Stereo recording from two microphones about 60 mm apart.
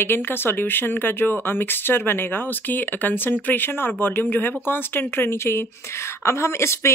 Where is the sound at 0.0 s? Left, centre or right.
Left.